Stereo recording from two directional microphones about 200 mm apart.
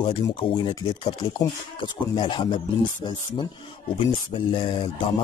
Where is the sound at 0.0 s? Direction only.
25° left (ahead or behind).